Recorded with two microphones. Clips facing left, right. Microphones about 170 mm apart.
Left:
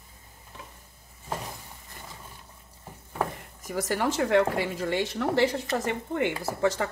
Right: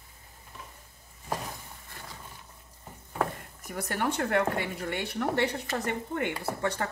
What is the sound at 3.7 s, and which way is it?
A woman's voice, 90° left.